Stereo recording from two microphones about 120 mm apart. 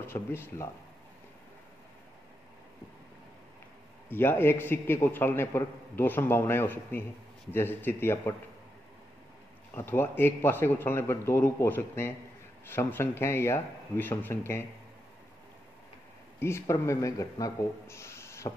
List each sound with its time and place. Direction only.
0.0 s a man's voice: 20° left (ahead or behind)
4.1 s a man's voice: 20° left (ahead or behind)
9.8 s a man's voice: 20° left (ahead or behind)
16.3 s speech: 20° left (ahead or behind)